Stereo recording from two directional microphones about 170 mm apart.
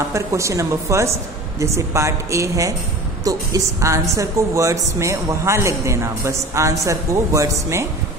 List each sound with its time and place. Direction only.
0.1 s a man's voice: 15° right (ahead or behind)